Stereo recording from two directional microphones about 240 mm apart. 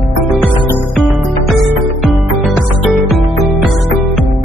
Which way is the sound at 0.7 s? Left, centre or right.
Centre.